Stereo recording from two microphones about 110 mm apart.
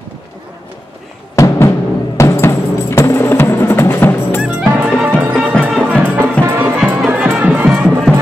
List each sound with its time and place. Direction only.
1.3 s music: 30° left (ahead or behind)
4.4 s music: 10° right (ahead or behind)